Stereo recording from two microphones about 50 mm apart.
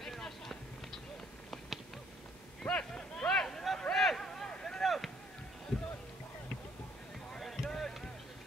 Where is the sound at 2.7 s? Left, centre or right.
Left.